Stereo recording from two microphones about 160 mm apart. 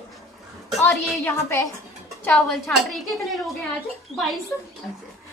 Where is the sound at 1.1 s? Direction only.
15° left (ahead or behind).